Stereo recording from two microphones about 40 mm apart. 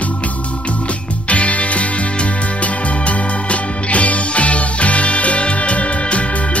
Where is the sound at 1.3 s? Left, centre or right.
Left.